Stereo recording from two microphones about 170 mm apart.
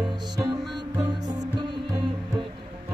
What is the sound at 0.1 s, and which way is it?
Music, 25° right (ahead or behind).